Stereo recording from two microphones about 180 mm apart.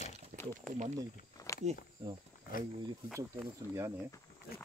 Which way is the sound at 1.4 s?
20° left (ahead or behind).